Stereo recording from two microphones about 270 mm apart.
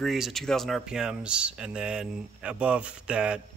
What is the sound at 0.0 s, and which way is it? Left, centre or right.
Speech, centre.